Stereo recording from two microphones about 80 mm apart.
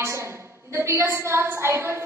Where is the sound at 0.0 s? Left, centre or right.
Right.